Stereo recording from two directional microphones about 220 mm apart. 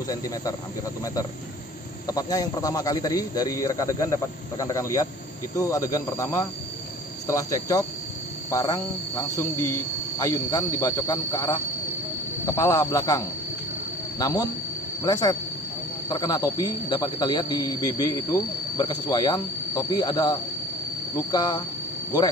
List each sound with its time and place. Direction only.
2.0 s a man's voice: 15° left (ahead or behind)